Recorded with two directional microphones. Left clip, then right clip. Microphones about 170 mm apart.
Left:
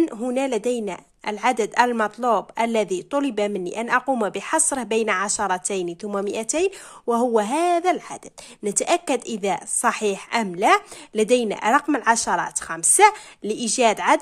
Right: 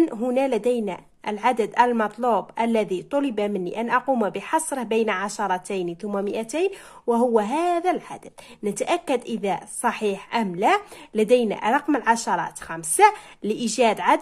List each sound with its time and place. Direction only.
0.0 s a woman's voice: 15° left (ahead or behind)